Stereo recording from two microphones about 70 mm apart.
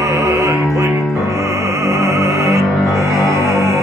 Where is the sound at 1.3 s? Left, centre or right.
Right.